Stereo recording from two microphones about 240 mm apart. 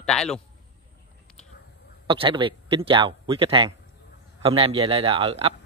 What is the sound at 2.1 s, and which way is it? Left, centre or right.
A man's voice, right.